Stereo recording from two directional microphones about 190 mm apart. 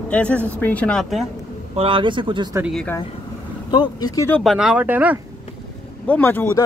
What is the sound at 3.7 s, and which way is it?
Speech, 20° left (ahead or behind).